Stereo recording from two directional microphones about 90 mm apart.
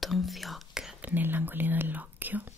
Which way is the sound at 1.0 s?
20° right (ahead or behind).